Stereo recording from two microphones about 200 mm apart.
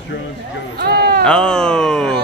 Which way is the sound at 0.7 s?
50° right (ahead or behind).